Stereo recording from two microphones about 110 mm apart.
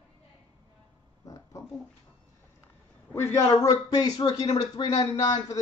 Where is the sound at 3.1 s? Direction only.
25° left (ahead or behind).